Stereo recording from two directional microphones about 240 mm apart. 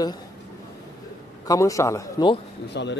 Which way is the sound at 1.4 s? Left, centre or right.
Centre.